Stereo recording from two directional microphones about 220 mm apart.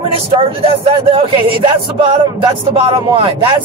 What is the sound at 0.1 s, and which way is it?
Speech, 25° right (ahead or behind).